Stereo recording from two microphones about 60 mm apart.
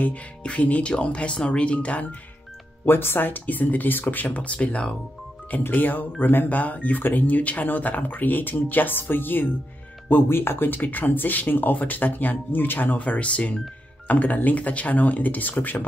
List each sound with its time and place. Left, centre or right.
0.0 s speech: left
2.8 s speech: left; by 4.9 s centre
5.6 s speech: left